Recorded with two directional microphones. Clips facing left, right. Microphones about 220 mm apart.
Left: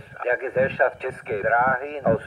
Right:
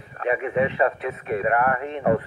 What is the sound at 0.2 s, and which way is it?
Speech, 35° left (ahead or behind).